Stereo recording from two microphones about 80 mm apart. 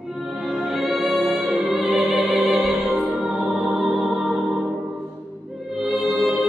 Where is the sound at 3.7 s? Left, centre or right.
Centre.